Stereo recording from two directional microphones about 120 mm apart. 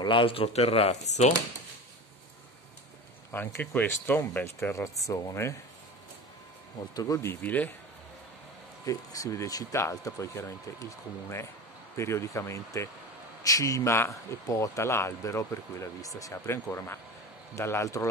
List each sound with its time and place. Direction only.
0.0 s speech: 45° left (ahead or behind); by 1.3 s 70° left (ahead or behind)
3.3 s a man's voice: 15° left (ahead or behind)
7.0 s a man's voice: 25° left (ahead or behind)
8.8 s a man's voice: 25° left (ahead or behind)